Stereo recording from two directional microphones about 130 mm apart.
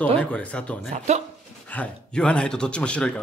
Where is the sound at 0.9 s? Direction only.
60° right (ahead or behind).